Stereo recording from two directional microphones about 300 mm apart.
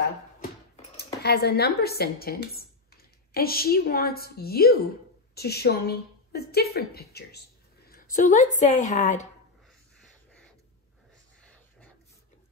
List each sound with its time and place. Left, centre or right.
0.4 s a woman's voice: left